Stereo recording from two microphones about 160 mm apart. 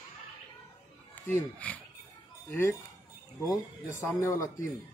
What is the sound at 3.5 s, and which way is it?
A man's voice, 15° left (ahead or behind).